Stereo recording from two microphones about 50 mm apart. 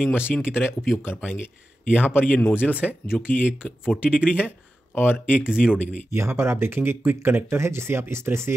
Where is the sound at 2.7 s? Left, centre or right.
Right.